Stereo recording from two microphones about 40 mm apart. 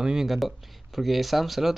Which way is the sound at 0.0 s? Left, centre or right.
Centre.